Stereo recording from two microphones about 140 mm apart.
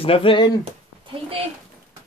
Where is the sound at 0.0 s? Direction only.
40° left (ahead or behind).